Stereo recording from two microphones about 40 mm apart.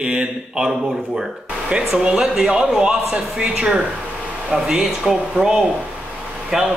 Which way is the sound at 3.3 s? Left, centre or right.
Right.